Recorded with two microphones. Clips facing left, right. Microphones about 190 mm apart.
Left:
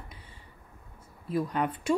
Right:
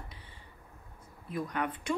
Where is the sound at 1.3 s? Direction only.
30° left (ahead or behind).